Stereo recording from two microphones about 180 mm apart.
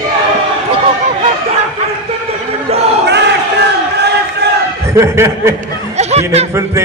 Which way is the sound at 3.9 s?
65° right (ahead or behind).